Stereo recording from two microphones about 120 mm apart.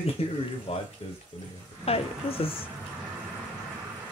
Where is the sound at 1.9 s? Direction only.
50° left (ahead or behind).